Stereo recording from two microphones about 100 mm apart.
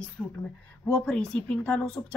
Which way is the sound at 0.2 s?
10° left (ahead or behind).